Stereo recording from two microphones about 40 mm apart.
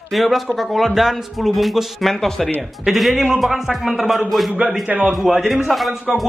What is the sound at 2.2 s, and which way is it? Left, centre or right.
Speech, centre.